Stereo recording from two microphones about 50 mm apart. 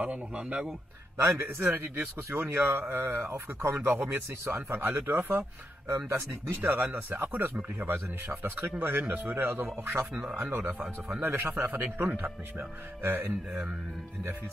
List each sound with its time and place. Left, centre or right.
0.0 s a man's voice: right
1.1 s a man's voice: right
2.0 s speech: right
2.5 s speech: right
3.8 s speech: right
5.9 s speech: right
6.6 s speech: right